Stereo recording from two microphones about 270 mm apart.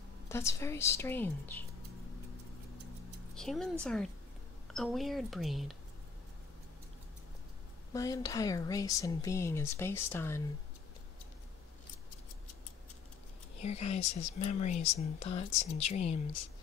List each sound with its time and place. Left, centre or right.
0.3 s speech: centre
3.3 s speech: centre
7.9 s speech: centre
13.6 s speech: left